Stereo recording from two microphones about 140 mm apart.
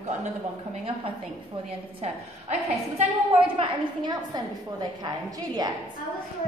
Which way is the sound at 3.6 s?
35° right (ahead or behind).